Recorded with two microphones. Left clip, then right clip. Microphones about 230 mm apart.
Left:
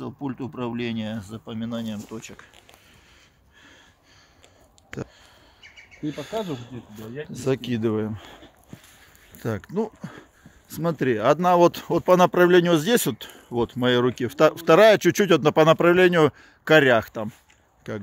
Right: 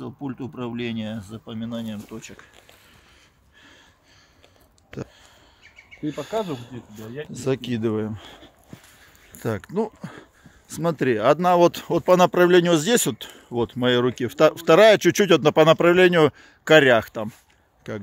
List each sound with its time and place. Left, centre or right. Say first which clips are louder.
0.0 s speech: left 1 dB; centre
6.0 s speech: right 3 dB; centre
9.4 s speech: right 2 dB; right
17.8 s speech: even; centre